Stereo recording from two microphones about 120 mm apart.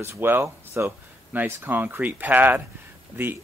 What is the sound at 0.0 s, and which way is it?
Speech, 20° right (ahead or behind).